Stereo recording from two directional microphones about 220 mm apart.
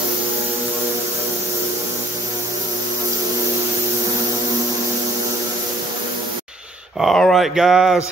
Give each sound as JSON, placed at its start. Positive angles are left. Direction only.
{"t": 7.0, "sound": "speech", "side_deg": 0}